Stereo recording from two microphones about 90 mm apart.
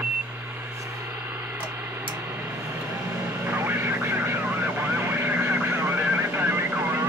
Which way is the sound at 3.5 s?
25° right (ahead or behind).